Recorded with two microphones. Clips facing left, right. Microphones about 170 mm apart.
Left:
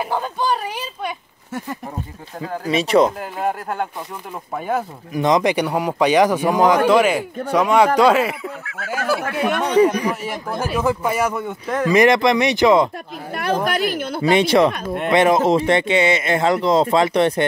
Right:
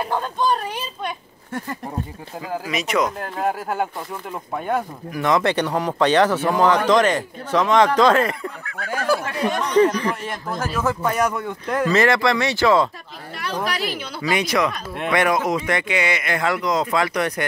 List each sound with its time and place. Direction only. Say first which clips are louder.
0.0 s a man's voice: even; 10° left (ahead or behind)
2.6 s speech: left 8 dB; 30° left (ahead or behind)
3.2 s speech: even; centre (ahead or behind)
5.1 s a man's voice: left 3 dB; 20° left (ahead or behind)
9.4 s speech: left 3 dB; 65° left (ahead or behind)
9.8 s a man's voice: left 1 dB; 10° left (ahead or behind)
11.9 s a man's voice: left 5 dB; 15° left (ahead or behind)
13.3 s speech: left 6 dB; 55° left (ahead or behind)
14.3 s speech: left 6 dB; 30° left (ahead or behind)